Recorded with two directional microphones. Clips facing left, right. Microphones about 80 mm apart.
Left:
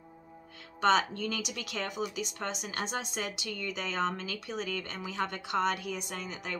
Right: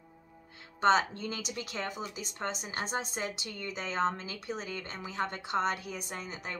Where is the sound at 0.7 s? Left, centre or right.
Right.